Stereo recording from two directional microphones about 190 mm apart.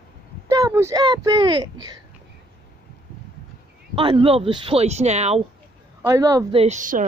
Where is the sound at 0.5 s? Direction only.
15° right (ahead or behind).